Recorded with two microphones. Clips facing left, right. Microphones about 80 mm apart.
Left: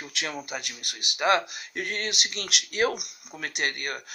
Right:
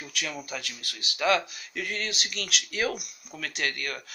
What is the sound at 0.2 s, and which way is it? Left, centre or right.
Speech, left.